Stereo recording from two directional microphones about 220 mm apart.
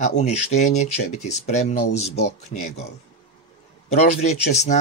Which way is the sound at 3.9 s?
30° left (ahead or behind).